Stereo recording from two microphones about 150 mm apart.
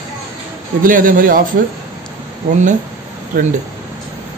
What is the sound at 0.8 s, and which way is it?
Speech, 65° right (ahead or behind).